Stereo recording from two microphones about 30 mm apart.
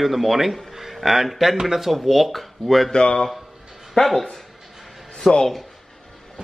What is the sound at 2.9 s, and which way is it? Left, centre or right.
A man's voice, left.